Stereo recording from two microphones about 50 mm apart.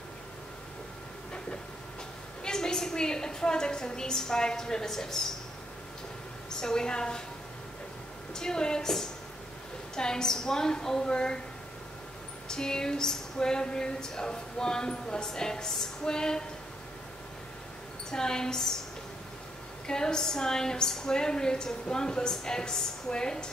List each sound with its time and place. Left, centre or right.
2.4 s a woman's voice: centre
6.6 s a woman's voice: centre
8.4 s a woman's voice: centre
12.4 s a woman's voice: centre
18.1 s a woman's voice: centre
19.9 s a woman's voice: centre